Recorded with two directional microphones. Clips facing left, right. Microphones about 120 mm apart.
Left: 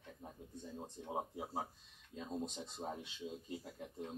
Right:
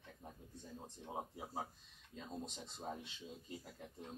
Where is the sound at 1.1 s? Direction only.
20° left (ahead or behind).